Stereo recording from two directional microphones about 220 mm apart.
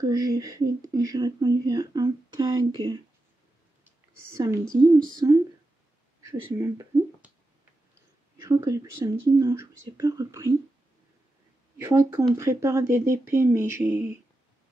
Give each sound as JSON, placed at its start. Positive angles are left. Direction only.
{"t": 0.0, "sound": "speech", "side_deg": -15}
{"t": 4.4, "sound": "speech", "side_deg": -15}
{"t": 8.5, "sound": "speech", "side_deg": -15}
{"t": 11.8, "sound": "speech", "side_deg": -15}